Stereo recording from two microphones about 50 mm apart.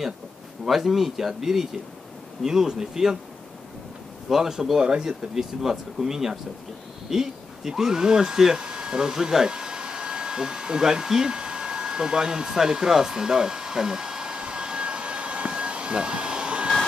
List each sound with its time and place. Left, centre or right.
0.7 s speech: centre
4.3 s speech: centre
7.1 s a sound: centre